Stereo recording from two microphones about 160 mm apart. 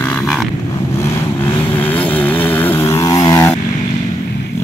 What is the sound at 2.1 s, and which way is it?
Vehicle, 10° left (ahead or behind).